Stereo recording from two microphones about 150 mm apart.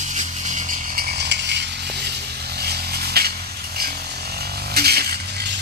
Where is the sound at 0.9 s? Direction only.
90° right.